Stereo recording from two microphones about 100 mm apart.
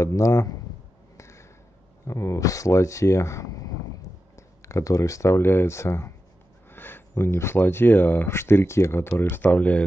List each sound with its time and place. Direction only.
0.0 s speech: 30° left (ahead or behind)
1.1 s a sound: 30° left (ahead or behind)
2.0 s speech: 30° left (ahead or behind); by 9.8 s 15° left (ahead or behind)